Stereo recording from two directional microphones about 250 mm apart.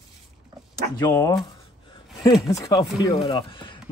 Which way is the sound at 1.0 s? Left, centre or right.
Centre.